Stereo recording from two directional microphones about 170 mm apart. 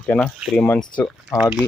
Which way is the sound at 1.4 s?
5° right (ahead or behind).